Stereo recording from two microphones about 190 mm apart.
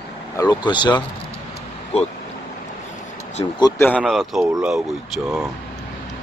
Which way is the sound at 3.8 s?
5° left (ahead or behind).